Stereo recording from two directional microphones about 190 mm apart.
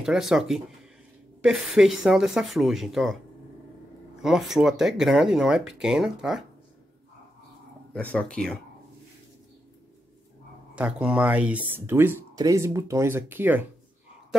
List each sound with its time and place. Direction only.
0.0 s speech: 5° right (ahead or behind)
4.2 s speech: centre (ahead or behind)
7.9 s speech: 5° left (ahead or behind)
10.7 s speech: 5° right (ahead or behind)